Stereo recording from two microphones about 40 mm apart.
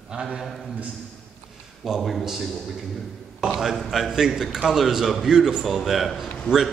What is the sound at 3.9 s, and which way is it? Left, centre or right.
A man's voice, centre.